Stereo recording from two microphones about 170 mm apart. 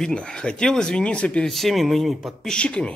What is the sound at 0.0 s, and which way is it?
Speech, 5° left (ahead or behind).